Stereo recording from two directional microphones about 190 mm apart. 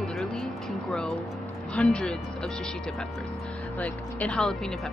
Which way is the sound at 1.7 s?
5° left (ahead or behind).